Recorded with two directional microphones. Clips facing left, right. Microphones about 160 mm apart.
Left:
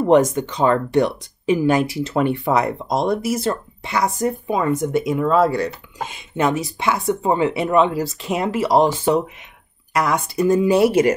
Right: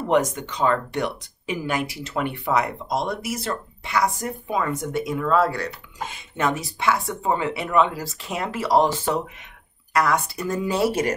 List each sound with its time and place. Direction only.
0.1 s speech: 30° left (ahead or behind); by 11.1 s 15° left (ahead or behind)